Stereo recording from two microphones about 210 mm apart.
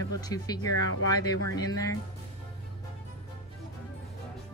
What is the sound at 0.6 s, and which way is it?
Speech, 90° left.